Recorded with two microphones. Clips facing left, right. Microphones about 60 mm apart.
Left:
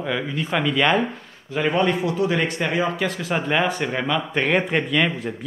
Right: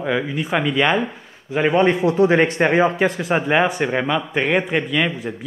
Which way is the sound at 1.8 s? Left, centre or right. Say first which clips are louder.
Right 6 dB; right.